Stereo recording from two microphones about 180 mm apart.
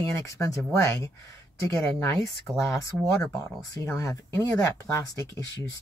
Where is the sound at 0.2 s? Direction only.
15° left (ahead or behind).